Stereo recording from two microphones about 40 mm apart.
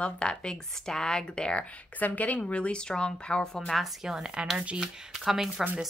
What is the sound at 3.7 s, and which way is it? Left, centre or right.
Speech, centre.